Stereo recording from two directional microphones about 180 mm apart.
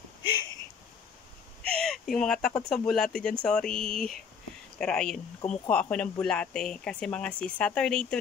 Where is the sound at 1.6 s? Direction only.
5° left (ahead or behind).